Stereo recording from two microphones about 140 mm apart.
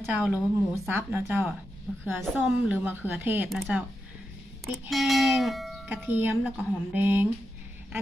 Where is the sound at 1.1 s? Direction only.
15° right (ahead or behind).